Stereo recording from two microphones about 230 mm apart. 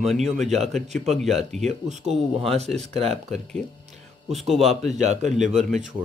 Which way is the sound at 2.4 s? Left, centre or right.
Right.